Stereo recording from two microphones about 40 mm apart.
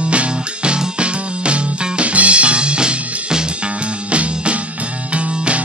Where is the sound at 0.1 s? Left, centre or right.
Right.